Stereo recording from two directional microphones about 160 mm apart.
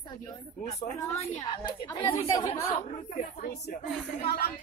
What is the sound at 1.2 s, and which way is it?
Speech, 30° left (ahead or behind).